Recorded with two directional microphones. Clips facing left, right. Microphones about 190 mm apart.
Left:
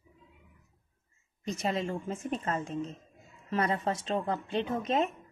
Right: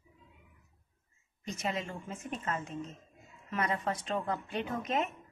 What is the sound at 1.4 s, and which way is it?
A woman's voice, 35° left (ahead or behind).